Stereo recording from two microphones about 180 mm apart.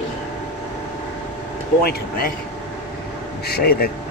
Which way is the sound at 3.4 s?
60° left (ahead or behind).